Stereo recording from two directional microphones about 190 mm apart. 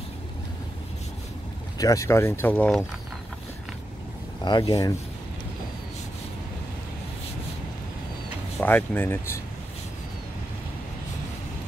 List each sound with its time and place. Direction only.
1.8 s speech: 15° left (ahead or behind)
4.5 s speech: 20° left (ahead or behind)
8.5 s speech: 10° left (ahead or behind)